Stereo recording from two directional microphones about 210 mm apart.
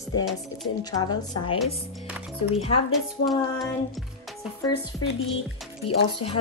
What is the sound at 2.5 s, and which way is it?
Speech, 30° left (ahead or behind).